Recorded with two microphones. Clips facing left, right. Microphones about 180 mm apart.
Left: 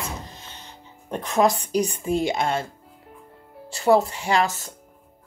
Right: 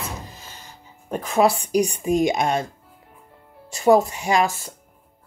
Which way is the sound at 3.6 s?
15° right (ahead or behind).